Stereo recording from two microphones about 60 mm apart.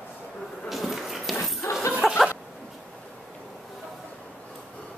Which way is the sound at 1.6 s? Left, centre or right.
Left.